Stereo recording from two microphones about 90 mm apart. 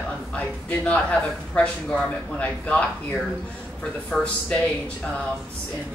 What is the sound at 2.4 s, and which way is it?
A man's voice, 15° left (ahead or behind).